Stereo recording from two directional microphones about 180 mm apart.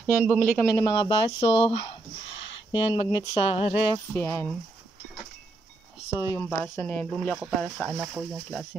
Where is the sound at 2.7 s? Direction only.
30° left (ahead or behind).